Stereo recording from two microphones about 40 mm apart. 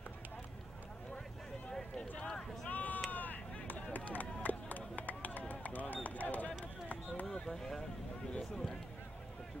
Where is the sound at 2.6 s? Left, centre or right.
Left.